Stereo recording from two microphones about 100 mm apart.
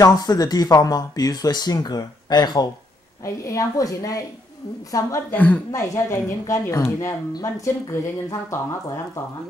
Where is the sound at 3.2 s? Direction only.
30° left (ahead or behind).